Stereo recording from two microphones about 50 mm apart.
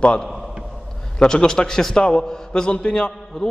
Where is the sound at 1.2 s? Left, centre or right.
Centre.